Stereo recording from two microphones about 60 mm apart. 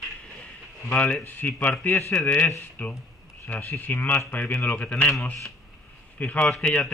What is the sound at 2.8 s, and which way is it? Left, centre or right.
Speech, left.